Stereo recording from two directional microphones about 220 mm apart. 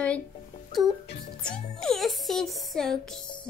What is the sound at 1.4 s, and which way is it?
Music, 5° left (ahead or behind).